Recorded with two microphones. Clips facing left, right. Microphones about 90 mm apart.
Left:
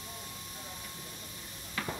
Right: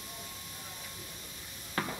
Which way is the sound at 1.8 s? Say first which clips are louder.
Right 2 dB; 40° right (ahead or behind).